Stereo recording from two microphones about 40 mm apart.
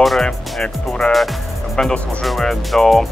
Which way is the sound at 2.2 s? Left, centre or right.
Centre.